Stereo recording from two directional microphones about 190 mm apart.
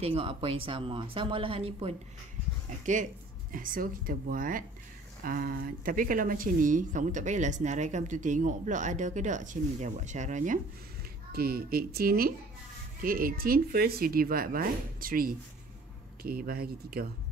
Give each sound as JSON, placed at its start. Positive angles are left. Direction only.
{"t": 0.0, "sound": "speech", "side_deg": -30}
{"t": 2.8, "sound": "speech", "side_deg": -40}
{"t": 11.3, "sound": "speech", "side_deg": -55}